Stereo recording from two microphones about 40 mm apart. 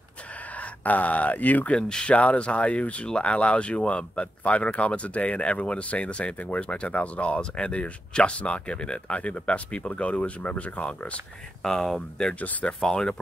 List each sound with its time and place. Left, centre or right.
0.6 s speech: left
1.7 s speech: left
11.6 s speech: centre